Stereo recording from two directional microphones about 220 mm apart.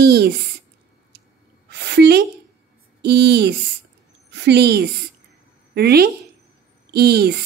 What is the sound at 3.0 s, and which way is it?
A woman's voice, 50° right (ahead or behind).